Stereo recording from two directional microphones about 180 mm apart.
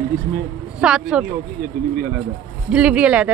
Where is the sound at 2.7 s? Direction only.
5° right (ahead or behind).